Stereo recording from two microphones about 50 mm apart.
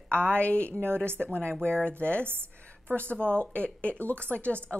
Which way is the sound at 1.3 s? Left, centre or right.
Left.